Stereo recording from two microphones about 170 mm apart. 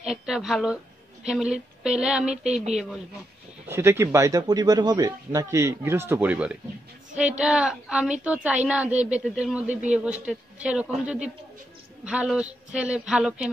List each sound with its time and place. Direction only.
0.0 s a man's voice: 5° right (ahead or behind)
2.4 s a woman's voice: 40° right (ahead or behind)
2.7 s a man's voice: centre (ahead or behind)
3.6 s speech: 15° right (ahead or behind)
12.0 s a man's voice: 5° right (ahead or behind)